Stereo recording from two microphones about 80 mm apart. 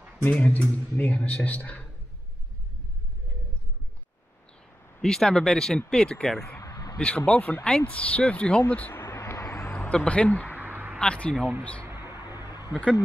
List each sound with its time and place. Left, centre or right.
0.2 s a man's voice: centre
5.0 s a man's voice: centre
6.6 s a sound: left
7.0 s a man's voice: centre
9.0 s a sound: left
9.8 s a man's voice: centre
10.5 s a sound: right
11.0 s a man's voice: centre
11.8 s music: right